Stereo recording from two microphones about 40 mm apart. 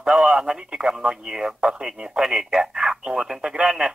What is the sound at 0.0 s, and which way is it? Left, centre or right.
Speech, right.